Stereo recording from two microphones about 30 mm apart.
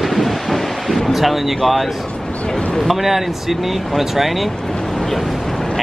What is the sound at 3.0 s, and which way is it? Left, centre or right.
Speech, centre.